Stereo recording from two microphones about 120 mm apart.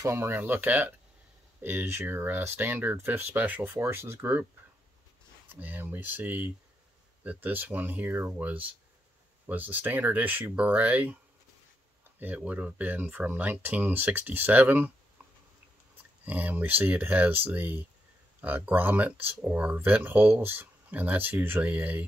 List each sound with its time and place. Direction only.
0.0 s speech: 20° right (ahead or behind)
5.5 s speech: 15° right (ahead or behind)
12.2 s speech: 15° right (ahead or behind)
16.3 s speech: 15° right (ahead or behind)